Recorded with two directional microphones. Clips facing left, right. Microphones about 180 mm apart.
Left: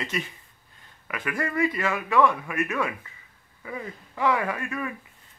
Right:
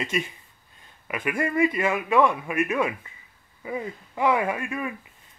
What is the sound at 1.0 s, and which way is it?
A man's voice, 20° right (ahead or behind).